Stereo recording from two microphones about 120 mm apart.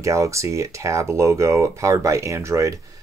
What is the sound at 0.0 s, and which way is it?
Speech, 25° right (ahead or behind).